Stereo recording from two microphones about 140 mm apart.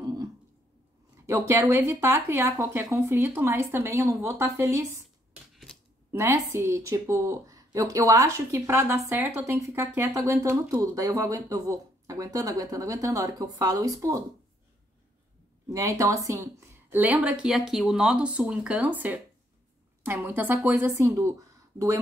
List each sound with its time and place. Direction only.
0.0 s a sound: 25° right (ahead or behind)
1.1 s speech: 20° right (ahead or behind)
15.7 s speech: 25° right (ahead or behind)